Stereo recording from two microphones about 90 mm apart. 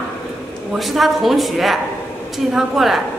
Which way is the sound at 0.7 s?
Centre (ahead or behind).